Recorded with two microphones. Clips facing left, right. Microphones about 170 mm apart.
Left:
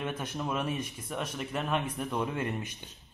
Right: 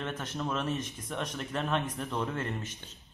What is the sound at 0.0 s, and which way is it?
Speech, 10° left (ahead or behind).